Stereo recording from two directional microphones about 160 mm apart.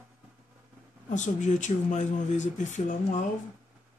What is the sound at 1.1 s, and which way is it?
Speech, 50° left (ahead or behind).